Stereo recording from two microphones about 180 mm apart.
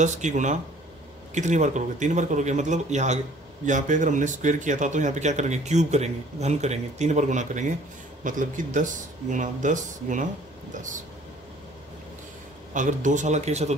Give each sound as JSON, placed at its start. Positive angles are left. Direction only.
{"t": 0.0, "sound": "speech", "side_deg": -40}
{"t": 12.7, "sound": "speech", "side_deg": -45}